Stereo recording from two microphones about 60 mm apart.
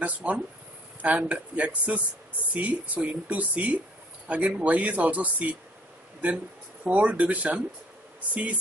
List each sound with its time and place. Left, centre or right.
0.0 s speech: right